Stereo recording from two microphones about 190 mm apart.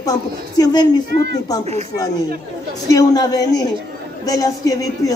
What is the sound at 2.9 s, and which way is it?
Speech, 20° left (ahead or behind).